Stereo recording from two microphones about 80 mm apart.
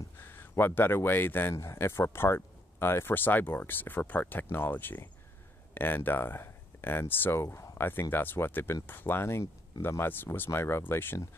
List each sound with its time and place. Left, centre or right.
0.2 s speech: left
1.5 s speech: left
7.4 s speech: left
7.7 s speech: left